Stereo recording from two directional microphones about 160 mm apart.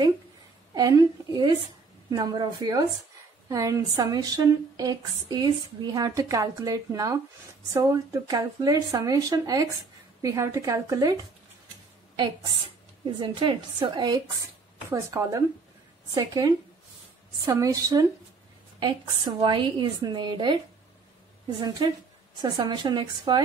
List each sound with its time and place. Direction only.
0.7 s speech: 25° right (ahead or behind)
13.2 s speech: 30° right (ahead or behind)
14.9 s speech: 15° right (ahead or behind)
21.5 s speech: 25° right (ahead or behind)